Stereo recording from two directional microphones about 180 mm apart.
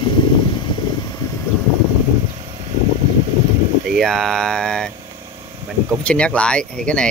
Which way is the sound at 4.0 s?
Centre (ahead or behind).